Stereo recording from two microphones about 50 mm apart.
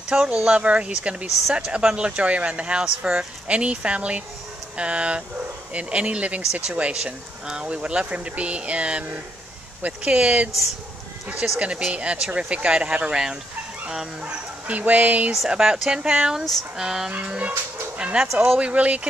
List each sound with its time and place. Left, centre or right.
0.1 s speech: right
14.2 s speech: right
15.5 s speech: centre
17.4 s speech: right